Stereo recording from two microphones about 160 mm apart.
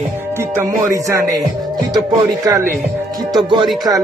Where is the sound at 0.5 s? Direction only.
15° right (ahead or behind).